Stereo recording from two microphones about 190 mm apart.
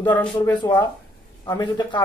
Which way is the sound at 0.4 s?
20° left (ahead or behind).